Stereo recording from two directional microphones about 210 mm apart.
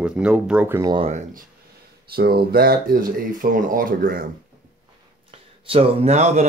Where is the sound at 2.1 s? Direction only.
50° right (ahead or behind).